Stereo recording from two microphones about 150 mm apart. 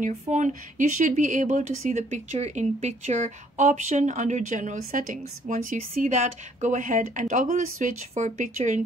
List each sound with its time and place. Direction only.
0.0 s speech: 55° right (ahead or behind)